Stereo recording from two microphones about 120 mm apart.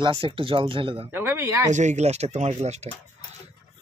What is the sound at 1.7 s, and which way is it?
Speech, 75° right (ahead or behind).